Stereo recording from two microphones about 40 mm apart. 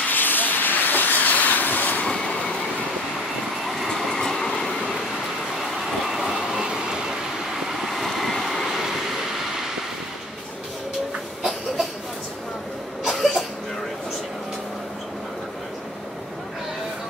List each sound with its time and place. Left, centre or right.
0.1 s vehicle: left
2.0 s vehicle: left
3.6 s train: centre
5.6 s vehicle: centre
7.6 s vehicle: centre
8.6 s vehicle: centre
13.0 s cough: centre